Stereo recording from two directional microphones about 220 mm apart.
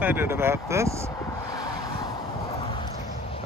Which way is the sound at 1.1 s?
15° left (ahead or behind).